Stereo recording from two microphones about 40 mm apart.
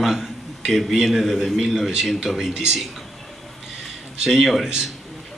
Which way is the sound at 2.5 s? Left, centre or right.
Centre.